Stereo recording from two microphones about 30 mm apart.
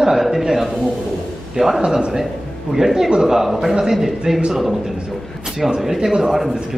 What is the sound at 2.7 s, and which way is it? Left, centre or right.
Speech, centre.